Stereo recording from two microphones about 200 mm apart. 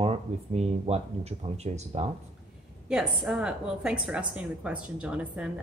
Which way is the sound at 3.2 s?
5° right (ahead or behind).